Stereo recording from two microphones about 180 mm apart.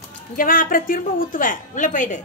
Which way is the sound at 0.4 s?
50° left (ahead or behind).